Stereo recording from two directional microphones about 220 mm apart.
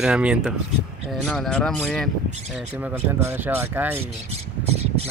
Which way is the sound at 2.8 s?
10° right (ahead or behind).